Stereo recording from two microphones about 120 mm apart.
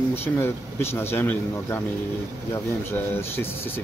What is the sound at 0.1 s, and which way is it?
Speech, 20° left (ahead or behind).